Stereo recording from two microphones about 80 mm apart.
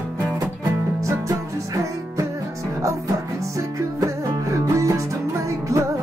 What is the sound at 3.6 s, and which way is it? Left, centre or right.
Music, right.